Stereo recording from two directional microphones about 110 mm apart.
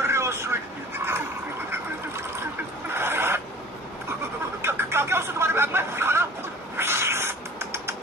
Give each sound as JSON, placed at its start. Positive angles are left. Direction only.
{"t": 0.0, "sound": "vehicle", "side_deg": -25}
{"t": 2.9, "sound": "chicken", "side_deg": -20}
{"t": 4.6, "sound": "a sound", "side_deg": -25}